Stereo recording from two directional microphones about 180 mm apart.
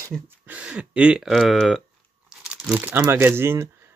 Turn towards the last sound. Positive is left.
turn(degrees=-15)  # may be behind; listen again after turning